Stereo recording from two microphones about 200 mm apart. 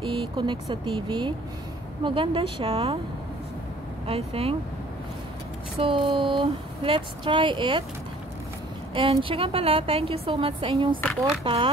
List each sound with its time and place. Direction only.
0.0 s a woman's voice: 25° right (ahead or behind)
4.1 s a woman's voice: 30° right (ahead or behind)
5.8 s a woman's voice: 25° right (ahead or behind)
8.9 s a woman's voice: 25° right (ahead or behind)